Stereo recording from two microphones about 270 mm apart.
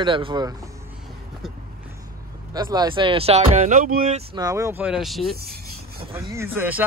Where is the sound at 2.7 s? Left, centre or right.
Centre.